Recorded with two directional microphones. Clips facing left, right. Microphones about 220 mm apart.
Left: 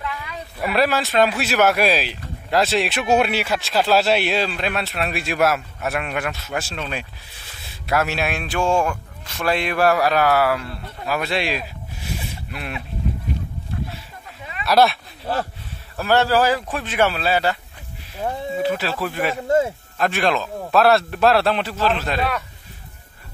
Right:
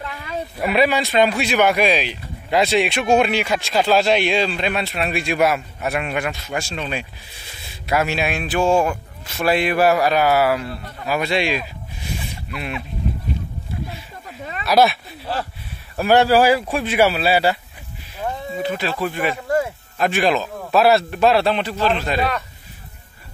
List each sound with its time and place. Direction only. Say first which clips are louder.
0.0 s a sound: right 1 dB; 35° right (ahead or behind)
0.6 s speech: right 2 dB; centre (ahead or behind)
14.6 s speech: right 1 dB; centre (ahead or behind)
16.0 s speech: right 3 dB; 15° right (ahead or behind)
18.6 s speech: even; 5° left (ahead or behind)
19.4 s a man's voice: left 4 dB; 25° left (ahead or behind)
20.0 s speech: right 2 dB; centre (ahead or behind)